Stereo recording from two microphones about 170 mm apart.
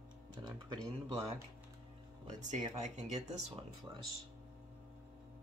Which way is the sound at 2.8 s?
40° right (ahead or behind).